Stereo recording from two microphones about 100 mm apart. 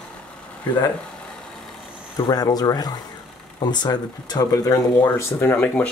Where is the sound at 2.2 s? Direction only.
40° left (ahead or behind).